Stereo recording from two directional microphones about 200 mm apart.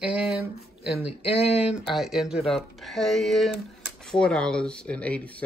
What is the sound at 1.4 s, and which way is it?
Speech, 30° left (ahead or behind).